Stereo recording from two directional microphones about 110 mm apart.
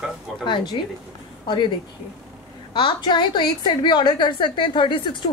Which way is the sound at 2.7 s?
45° left (ahead or behind).